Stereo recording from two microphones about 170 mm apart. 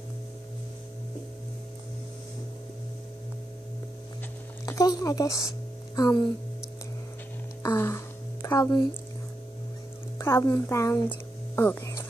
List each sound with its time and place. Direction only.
4.6 s speech: 20° left (ahead or behind)
7.6 s a sound: 15° left (ahead or behind)
10.1 s a woman's voice: 15° left (ahead or behind)